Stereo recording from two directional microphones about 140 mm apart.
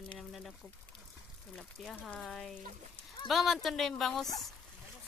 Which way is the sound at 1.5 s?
Centre (ahead or behind).